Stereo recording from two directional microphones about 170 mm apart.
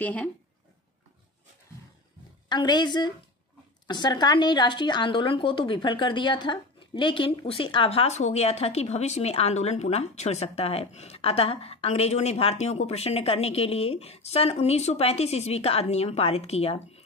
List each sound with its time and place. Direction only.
0.0 s speech: 10° left (ahead or behind)
2.5 s a woman's voice: 25° left (ahead or behind)